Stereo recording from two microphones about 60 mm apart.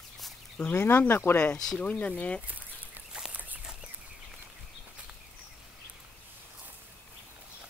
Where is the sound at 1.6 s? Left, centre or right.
Centre.